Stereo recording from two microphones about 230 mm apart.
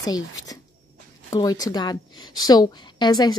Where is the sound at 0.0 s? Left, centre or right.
Centre.